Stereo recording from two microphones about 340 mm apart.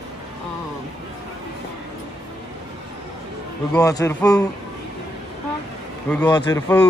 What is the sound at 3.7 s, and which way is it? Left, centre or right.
Speech, centre.